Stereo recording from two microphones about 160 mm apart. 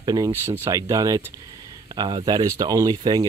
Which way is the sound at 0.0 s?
25° right (ahead or behind).